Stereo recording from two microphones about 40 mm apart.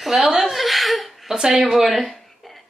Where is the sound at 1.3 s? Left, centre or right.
Centre.